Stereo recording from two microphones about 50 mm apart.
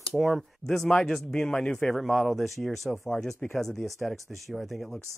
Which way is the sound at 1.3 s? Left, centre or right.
Centre.